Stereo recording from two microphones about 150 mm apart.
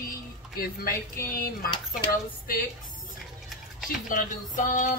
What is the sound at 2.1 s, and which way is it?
Speech, 75° left (ahead or behind).